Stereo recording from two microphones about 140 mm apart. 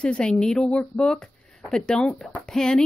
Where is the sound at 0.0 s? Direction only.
5° left (ahead or behind).